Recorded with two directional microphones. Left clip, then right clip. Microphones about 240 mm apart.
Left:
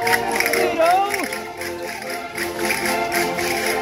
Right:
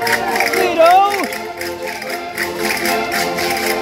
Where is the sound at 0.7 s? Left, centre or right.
Right.